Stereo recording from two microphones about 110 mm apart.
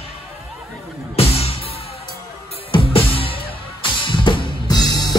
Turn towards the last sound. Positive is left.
turn(degrees=35)  # may be behind; listen again after turning